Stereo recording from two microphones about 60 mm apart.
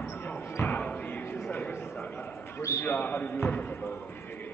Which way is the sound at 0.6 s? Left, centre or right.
Left.